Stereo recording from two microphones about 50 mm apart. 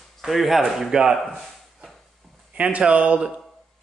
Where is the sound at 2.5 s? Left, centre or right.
Right.